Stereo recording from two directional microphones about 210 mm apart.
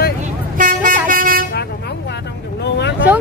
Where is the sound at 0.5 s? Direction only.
40° right (ahead or behind).